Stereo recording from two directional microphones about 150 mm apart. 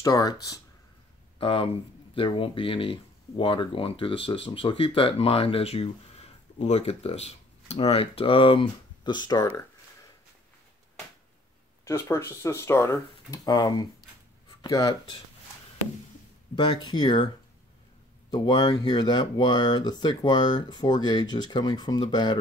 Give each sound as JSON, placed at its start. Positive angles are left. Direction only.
{"t": 0.0, "sound": "speech", "side_deg": 25}
{"t": 1.4, "sound": "speech", "side_deg": 35}
{"t": 11.8, "sound": "speech", "side_deg": 15}
{"t": 16.5, "sound": "speech", "side_deg": 30}
{"t": 18.3, "sound": "speech", "side_deg": 30}